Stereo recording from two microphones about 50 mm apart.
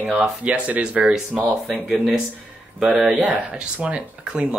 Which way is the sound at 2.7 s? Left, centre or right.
Centre.